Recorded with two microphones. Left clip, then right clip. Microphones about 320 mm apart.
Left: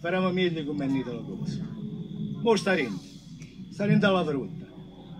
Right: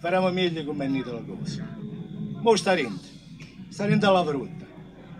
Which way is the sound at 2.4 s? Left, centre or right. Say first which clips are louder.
Right 3 dB; centre.